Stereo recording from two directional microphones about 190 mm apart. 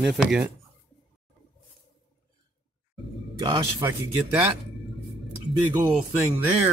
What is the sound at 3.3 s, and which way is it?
Speech, 20° right (ahead or behind).